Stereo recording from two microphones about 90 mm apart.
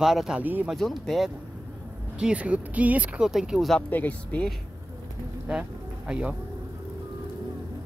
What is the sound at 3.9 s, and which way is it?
Speech, 20° left (ahead or behind).